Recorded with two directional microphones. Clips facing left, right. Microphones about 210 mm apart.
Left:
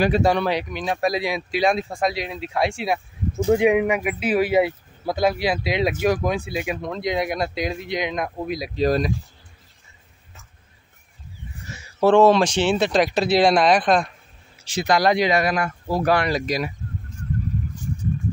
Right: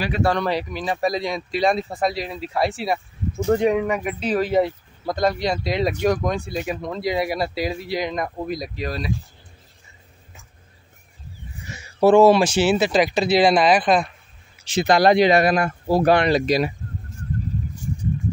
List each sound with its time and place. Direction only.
0.2 s speech: 10° left (ahead or behind)
0.5 s speech: centre (ahead or behind)
12.0 s speech: 10° right (ahead or behind)
14.6 s speech: 25° right (ahead or behind)